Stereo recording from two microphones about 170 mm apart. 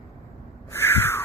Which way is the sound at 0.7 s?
15° left (ahead or behind).